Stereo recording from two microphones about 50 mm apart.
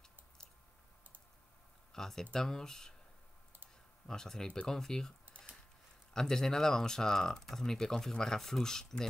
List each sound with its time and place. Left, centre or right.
1.9 s speech: centre
4.1 s speech: centre
6.1 s speech: centre